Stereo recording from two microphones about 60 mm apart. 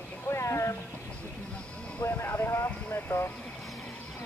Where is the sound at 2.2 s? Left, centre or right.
Left.